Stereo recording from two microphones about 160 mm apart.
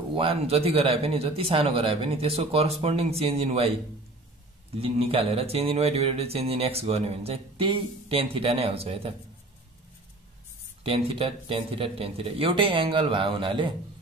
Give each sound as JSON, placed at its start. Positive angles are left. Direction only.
{"t": 0.1, "sound": "speech", "side_deg": -35}
{"t": 4.7, "sound": "speech", "side_deg": -40}
{"t": 10.8, "sound": "speech", "side_deg": -35}